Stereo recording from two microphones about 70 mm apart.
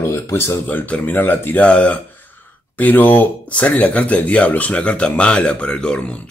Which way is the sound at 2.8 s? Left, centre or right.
Left.